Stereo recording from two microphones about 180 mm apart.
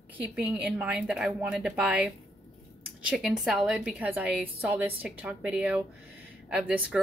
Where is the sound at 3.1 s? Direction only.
Centre (ahead or behind).